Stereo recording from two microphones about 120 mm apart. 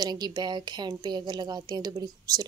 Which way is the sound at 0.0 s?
35° right (ahead or behind).